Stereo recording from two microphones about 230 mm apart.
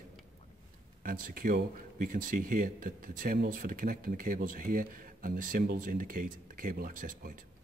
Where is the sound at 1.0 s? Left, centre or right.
Right.